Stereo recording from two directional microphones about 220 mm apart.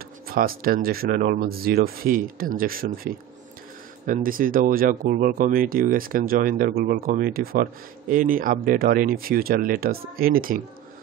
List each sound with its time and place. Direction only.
0.3 s speech: 40° right (ahead or behind)